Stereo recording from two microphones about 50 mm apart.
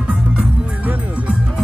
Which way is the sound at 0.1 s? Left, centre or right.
Right.